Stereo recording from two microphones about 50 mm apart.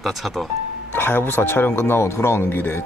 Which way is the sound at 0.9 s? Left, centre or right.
Left.